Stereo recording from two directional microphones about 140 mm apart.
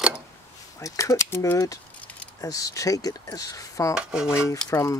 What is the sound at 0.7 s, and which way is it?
Speech, 20° left (ahead or behind).